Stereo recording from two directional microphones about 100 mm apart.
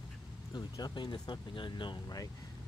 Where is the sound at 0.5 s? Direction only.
40° left (ahead or behind).